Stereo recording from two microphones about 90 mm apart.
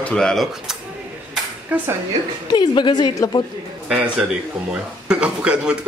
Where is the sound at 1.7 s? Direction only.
15° right (ahead or behind).